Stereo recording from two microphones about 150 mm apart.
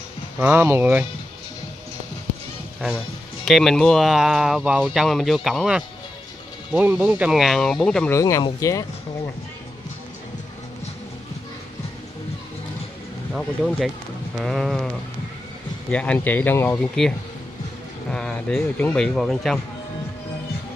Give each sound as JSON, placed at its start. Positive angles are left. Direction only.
{"t": 0.4, "sound": "speech", "side_deg": -15}
{"t": 3.4, "sound": "speech", "side_deg": 0}
{"t": 8.1, "sound": "speech", "side_deg": 20}
{"t": 13.3, "sound": "speech", "side_deg": 0}
{"t": 15.9, "sound": "speech", "side_deg": 10}
{"t": 18.1, "sound": "speech", "side_deg": 5}